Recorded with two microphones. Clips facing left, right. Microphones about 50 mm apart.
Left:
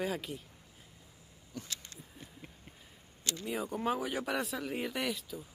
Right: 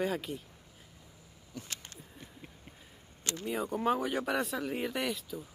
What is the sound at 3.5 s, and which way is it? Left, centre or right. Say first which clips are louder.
Speech: right 3 dB; centre.